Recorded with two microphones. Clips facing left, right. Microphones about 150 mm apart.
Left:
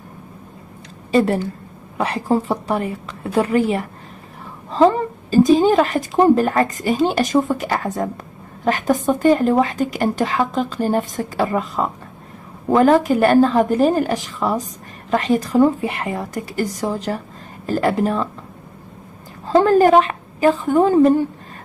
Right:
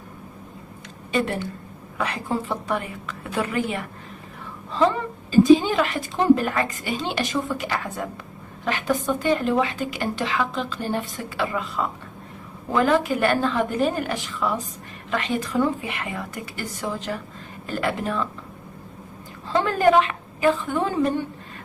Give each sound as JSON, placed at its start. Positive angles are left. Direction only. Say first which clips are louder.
{"t": 1.1, "sound": "a woman's voice", "louder": "left 8 dB", "side_deg": 40}
{"t": 19.4, "sound": "a woman's voice", "louder": "left 7 dB", "side_deg": 40}